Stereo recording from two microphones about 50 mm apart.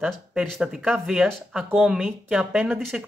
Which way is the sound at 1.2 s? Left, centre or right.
Centre.